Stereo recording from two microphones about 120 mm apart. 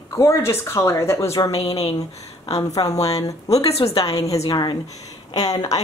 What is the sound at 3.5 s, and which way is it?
Speech, 60° left (ahead or behind).